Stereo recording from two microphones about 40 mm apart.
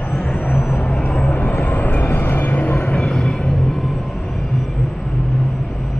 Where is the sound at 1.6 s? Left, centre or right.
Left.